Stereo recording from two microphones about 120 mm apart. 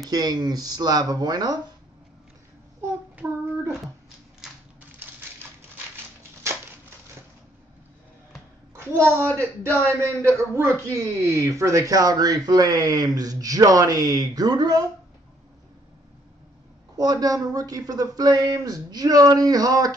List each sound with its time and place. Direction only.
0.1 s a man's voice: 35° right (ahead or behind)
4.4 s crushing: 5° right (ahead or behind)
8.8 s a man's voice: 20° right (ahead or behind)
16.9 s a man's voice: 30° right (ahead or behind)